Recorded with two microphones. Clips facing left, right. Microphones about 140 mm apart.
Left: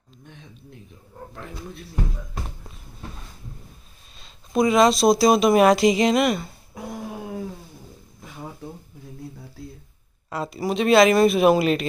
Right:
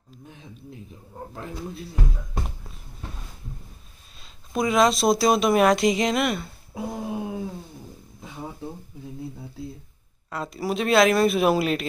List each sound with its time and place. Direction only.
1.3 s speech: 30° right (ahead or behind)
4.2 s speech: centre (ahead or behind)
6.7 s a sound: 25° right (ahead or behind)
10.3 s speech: 5° left (ahead or behind)